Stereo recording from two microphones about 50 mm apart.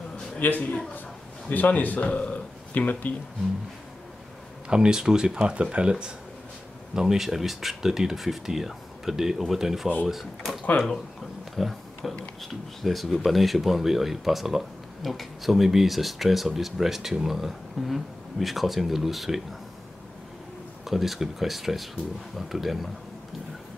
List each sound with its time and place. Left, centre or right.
0.4 s a man's voice: left
4.6 s speech: centre
7.0 s speech: centre
11.5 s a sound: centre
12.4 s speech: centre
20.8 s speech: centre